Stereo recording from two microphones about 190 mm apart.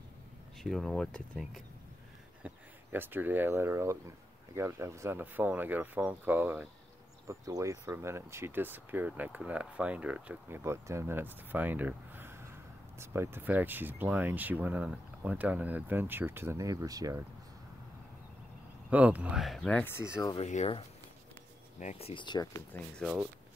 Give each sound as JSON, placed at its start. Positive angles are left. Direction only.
{"t": 0.6, "sound": "speech", "side_deg": 0}
{"t": 2.4, "sound": "speech", "side_deg": -10}
{"t": 18.9, "sound": "speech", "side_deg": -10}
{"t": 20.3, "sound": "speech", "side_deg": 35}
{"t": 22.9, "sound": "speech", "side_deg": 0}